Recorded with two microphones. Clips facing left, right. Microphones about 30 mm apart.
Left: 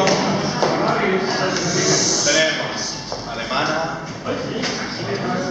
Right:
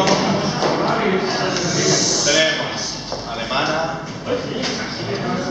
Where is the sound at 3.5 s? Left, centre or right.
Centre.